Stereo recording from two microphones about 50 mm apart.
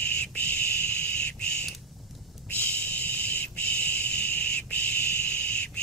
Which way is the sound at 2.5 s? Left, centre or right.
Left.